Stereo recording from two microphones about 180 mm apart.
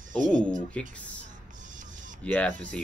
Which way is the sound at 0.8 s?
5° left (ahead or behind).